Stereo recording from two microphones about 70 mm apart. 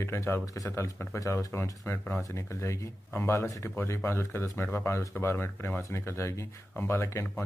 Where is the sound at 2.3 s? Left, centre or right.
Left.